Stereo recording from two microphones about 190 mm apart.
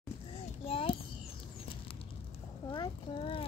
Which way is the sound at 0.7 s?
30° left (ahead or behind).